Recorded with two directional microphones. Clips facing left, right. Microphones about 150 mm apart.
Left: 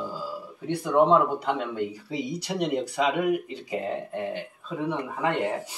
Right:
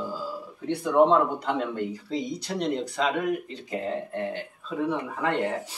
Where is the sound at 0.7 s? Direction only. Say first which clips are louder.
Even; 5° left (ahead or behind).